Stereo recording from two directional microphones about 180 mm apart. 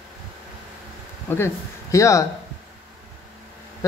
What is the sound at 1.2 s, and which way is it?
Speech, 15° left (ahead or behind).